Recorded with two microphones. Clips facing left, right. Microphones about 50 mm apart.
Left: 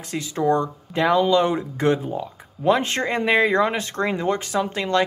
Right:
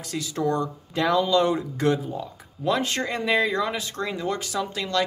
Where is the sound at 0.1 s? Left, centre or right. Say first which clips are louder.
Left 5 dB; left.